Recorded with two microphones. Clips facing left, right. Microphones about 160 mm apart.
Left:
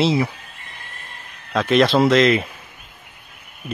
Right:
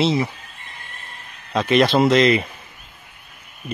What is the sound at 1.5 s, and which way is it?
Speech, centre (ahead or behind).